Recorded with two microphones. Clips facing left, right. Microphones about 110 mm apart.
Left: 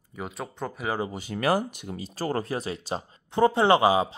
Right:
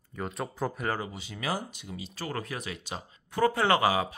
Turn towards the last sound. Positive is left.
turn(degrees=20)  # may be behind; listen again after turning